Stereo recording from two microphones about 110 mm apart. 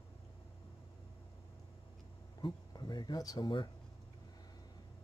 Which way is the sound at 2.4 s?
40° left (ahead or behind).